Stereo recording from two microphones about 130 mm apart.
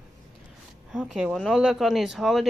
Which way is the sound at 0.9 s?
5° right (ahead or behind).